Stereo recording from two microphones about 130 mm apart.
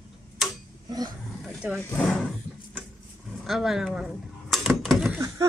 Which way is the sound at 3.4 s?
5° right (ahead or behind).